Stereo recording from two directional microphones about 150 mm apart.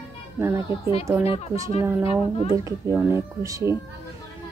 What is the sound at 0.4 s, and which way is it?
Speech, 15° right (ahead or behind).